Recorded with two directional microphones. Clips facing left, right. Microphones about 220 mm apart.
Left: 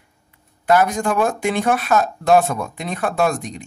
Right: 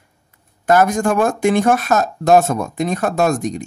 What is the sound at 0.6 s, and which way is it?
Speech, 45° right (ahead or behind).